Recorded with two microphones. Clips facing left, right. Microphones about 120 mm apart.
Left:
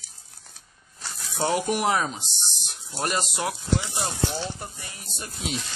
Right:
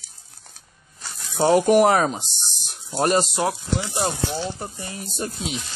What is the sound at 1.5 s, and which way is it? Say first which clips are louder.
Speech: right 9 dB; 50° right (ahead or behind).